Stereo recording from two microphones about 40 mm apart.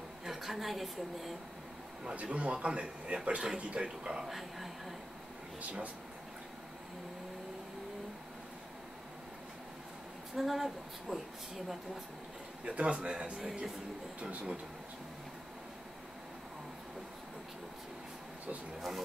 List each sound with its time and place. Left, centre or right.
0.2 s a woman's voice: centre
2.2 s a man's voice: right
4.3 s speech: centre
5.6 s speech: right
10.3 s speech: centre
12.6 s a man's voice: right